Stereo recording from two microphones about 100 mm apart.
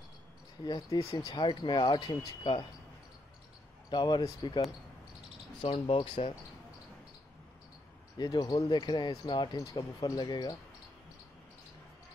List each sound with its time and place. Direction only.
0.7 s speech: 40° left (ahead or behind); by 2.6 s 60° left (ahead or behind)
3.9 s speech: 45° left (ahead or behind)
5.6 s speech: 55° left (ahead or behind)
8.2 s speech: 45° left (ahead or behind)
9.6 s speech: 35° left (ahead or behind)